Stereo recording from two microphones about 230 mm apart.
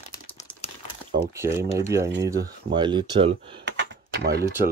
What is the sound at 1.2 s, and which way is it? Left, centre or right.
Speech, centre.